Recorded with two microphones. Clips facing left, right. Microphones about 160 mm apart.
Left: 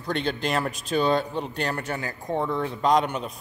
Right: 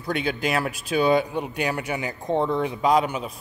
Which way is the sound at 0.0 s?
10° right (ahead or behind).